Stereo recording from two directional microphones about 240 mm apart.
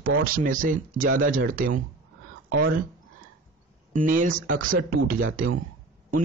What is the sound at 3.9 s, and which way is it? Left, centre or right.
Speech, right.